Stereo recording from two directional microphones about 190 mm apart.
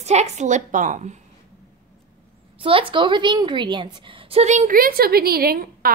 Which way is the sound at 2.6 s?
30° right (ahead or behind).